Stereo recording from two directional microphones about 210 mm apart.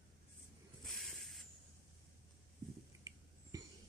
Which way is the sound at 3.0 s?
15° right (ahead or behind).